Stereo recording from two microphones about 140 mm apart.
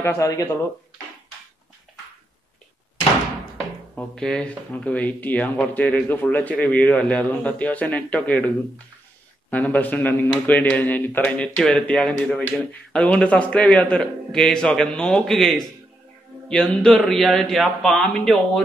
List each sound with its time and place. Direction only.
0.0 s speech: 20° left (ahead or behind)
3.9 s speech: 5° left (ahead or behind)